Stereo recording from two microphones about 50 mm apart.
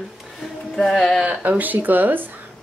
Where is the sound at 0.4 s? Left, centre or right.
Centre.